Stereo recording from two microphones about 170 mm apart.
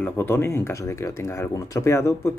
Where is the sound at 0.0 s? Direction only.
15° left (ahead or behind).